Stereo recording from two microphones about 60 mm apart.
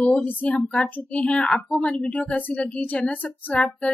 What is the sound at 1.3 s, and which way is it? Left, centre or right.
A child's voice, centre.